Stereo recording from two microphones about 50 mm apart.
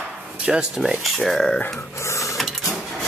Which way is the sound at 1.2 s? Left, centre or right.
Centre.